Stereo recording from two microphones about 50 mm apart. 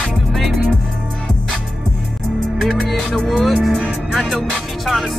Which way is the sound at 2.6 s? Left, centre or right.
Centre.